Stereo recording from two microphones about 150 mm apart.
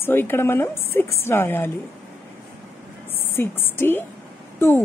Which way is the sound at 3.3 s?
15° left (ahead or behind).